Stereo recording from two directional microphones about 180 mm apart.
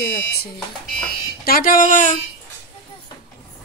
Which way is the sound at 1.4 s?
55° left (ahead or behind).